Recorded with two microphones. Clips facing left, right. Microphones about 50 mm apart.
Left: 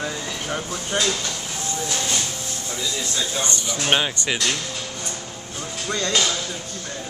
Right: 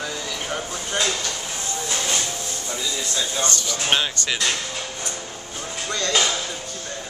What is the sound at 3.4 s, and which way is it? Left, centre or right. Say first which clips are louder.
Speech: even; left.